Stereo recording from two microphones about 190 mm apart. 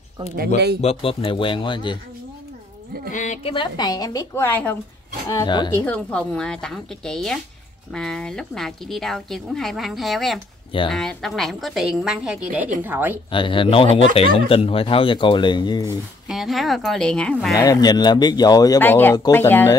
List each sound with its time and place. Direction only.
0.7 s speech: 30° left (ahead or behind)
3.1 s a woman's voice: 40° left (ahead or behind)
3.5 s speech: 20° left (ahead or behind)
5.9 s a woman's voice: 5° left (ahead or behind)
13.3 s speech: 25° left (ahead or behind)
16.3 s a woman's voice: centre (ahead or behind)
17.6 s speech: 20° left (ahead or behind)